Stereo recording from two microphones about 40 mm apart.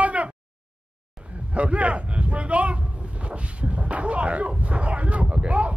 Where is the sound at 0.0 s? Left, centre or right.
Right.